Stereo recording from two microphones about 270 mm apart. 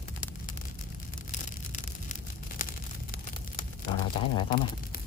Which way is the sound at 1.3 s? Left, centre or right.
Left.